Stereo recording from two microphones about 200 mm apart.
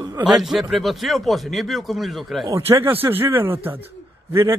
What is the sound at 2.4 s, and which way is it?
Speech, 15° right (ahead or behind).